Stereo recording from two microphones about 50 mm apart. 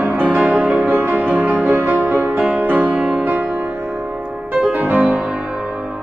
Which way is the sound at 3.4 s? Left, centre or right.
Centre.